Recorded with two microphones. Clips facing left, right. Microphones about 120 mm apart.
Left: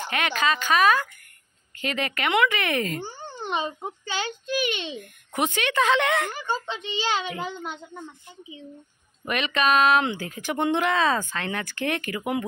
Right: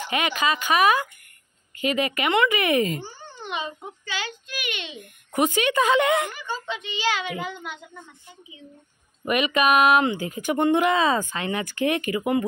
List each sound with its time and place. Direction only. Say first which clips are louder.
0.1 s speech: right 1 dB; 5° right (ahead or behind)
3.4 s a child's voice: left 3 dB; 35° left (ahead or behind)
5.3 s a woman's voice: right 4 dB; 5° right (ahead or behind)
6.3 s a child's voice: left 2 dB; 30° left (ahead or behind)
9.2 s speech: right 3 dB; 10° right (ahead or behind)